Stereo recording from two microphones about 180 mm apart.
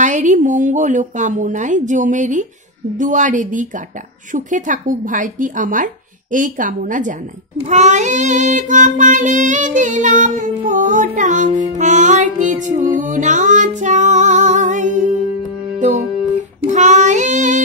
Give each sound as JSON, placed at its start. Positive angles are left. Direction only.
{"t": 0.0, "sound": "child singing", "side_deg": -45}
{"t": 13.0, "sound": "music", "side_deg": -45}
{"t": 16.6, "sound": "child singing", "side_deg": -40}